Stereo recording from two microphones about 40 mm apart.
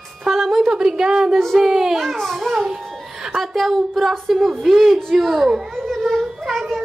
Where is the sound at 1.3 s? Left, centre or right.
Centre.